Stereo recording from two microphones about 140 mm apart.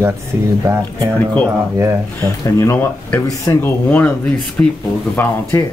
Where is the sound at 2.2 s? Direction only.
20° left (ahead or behind).